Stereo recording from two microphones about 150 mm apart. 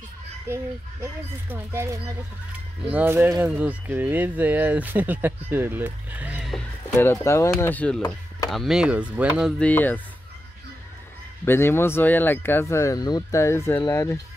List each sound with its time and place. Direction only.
0.5 s speech: 15° right (ahead or behind)
7.0 s speech: 20° left (ahead or behind); by 9.5 s 10° right (ahead or behind)
9.6 s speech: 10° left (ahead or behind)
11.4 s speech: 15° left (ahead or behind)